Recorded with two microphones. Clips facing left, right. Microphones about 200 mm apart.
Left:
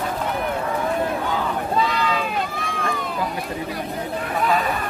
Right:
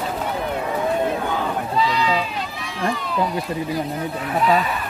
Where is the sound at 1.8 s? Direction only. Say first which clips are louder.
Right 2 dB; 50° left (ahead or behind).